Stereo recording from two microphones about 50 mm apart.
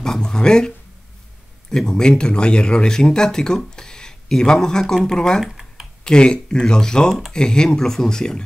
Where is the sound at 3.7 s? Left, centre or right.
Centre.